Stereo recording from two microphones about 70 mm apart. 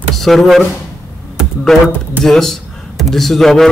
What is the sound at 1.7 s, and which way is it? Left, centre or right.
A man's voice, centre.